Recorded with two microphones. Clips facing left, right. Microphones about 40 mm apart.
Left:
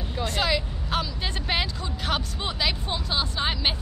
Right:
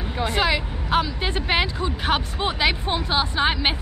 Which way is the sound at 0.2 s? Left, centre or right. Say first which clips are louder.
Right 4 dB; centre.